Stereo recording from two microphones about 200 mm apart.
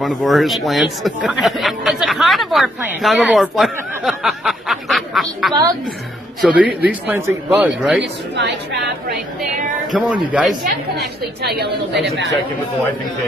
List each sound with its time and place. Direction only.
0.0 s speech: centre (ahead or behind)
8.0 s a woman's voice: 60° right (ahead or behind)
9.9 s speech: centre (ahead or behind)
11.4 s a woman's voice: 55° right (ahead or behind)